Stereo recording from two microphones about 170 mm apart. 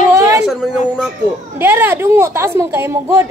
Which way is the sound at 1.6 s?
10° right (ahead or behind).